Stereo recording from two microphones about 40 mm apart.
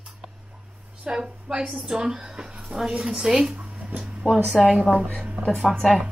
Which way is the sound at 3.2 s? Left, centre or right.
Centre.